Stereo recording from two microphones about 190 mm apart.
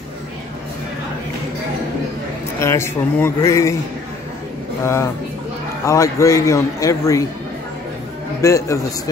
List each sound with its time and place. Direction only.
2.6 s a man's voice: 15° left (ahead or behind)
4.8 s a man's voice: 15° left (ahead or behind)
8.4 s a man's voice: 15° left (ahead or behind)